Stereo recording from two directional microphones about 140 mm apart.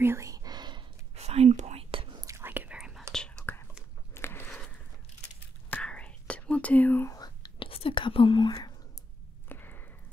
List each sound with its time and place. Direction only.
0.0 s whispering: 20° right (ahead or behind)
1.1 s whispering: 50° right (ahead or behind)
2.2 s whispering: 20° right (ahead or behind); by 3.5 s 5° left (ahead or behind)
4.1 s a sound: 15° left (ahead or behind)
5.7 s whispering: 10° left (ahead or behind)
7.2 s whispering: 30° left (ahead or behind)
9.5 s a sound: 15° left (ahead or behind)